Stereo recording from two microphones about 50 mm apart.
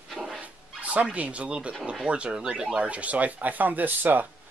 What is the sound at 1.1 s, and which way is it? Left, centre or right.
Speech, right.